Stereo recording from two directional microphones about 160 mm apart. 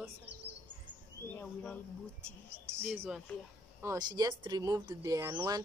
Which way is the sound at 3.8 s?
20° right (ahead or behind).